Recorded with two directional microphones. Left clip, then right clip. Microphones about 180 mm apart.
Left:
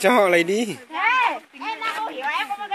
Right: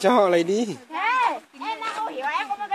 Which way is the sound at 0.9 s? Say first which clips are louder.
Left 2 dB; 10° right (ahead or behind).